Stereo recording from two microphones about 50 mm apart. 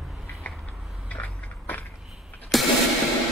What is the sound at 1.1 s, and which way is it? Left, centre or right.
Skateboard, left.